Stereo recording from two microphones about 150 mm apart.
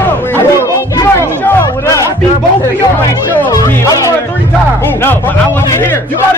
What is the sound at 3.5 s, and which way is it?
Music, 25° left (ahead or behind).